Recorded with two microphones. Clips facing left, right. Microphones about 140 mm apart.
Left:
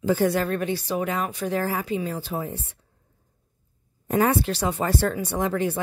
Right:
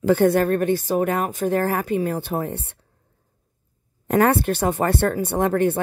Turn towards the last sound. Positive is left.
turn(degrees=-55)  # may be behind; listen again after turning